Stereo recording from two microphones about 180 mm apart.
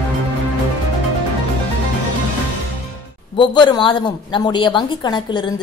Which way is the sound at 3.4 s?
25° left (ahead or behind).